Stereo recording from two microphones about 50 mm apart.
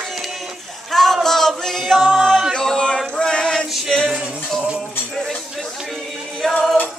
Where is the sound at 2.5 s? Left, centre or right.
Centre.